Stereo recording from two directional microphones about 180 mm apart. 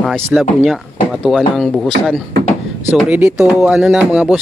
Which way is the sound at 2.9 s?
Centre (ahead or behind).